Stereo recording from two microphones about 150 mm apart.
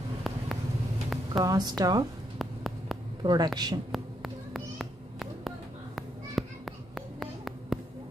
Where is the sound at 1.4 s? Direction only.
25° right (ahead or behind).